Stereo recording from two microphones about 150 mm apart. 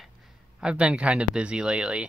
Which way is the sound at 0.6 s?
5° right (ahead or behind).